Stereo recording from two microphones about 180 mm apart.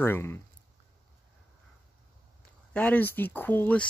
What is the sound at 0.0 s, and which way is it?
Speech, 10° left (ahead or behind).